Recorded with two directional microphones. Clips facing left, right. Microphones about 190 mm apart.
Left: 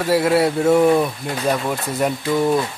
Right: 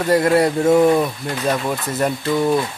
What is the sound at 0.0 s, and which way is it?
Speech, 5° left (ahead or behind).